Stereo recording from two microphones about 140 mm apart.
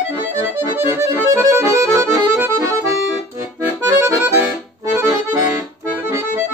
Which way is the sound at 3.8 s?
20° right (ahead or behind).